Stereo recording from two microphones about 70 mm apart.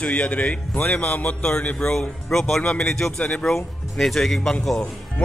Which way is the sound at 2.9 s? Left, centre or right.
Centre.